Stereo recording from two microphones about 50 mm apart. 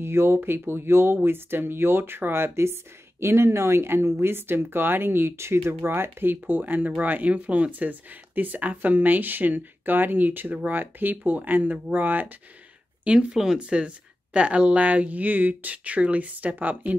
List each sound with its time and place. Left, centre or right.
0.0 s speech: right
13.0 s speech: right
13.6 s speech: right